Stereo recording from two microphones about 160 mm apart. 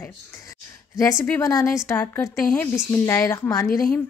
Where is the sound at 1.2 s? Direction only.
15° left (ahead or behind).